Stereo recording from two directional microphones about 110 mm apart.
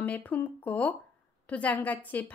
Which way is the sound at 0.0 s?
15° left (ahead or behind).